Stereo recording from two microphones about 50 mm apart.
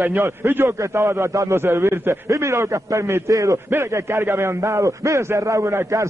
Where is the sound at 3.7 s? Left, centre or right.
Right.